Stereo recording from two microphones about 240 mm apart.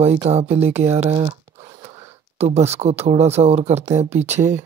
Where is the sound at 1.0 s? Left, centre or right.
Centre.